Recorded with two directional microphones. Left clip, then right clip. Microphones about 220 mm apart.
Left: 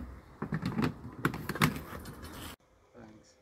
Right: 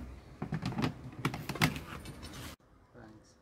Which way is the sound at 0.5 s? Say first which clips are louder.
Left 3 dB; 5° left (ahead or behind).